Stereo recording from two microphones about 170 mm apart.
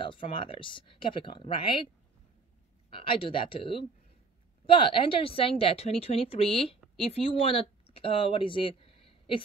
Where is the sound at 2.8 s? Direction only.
30° left (ahead or behind).